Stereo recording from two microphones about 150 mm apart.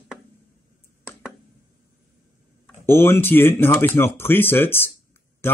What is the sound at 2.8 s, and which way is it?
Speech, 15° left (ahead or behind).